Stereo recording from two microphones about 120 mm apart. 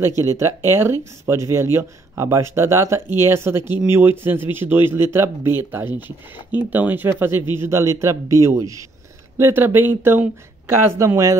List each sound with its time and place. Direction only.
0.2 s a man's voice: 25° right (ahead or behind)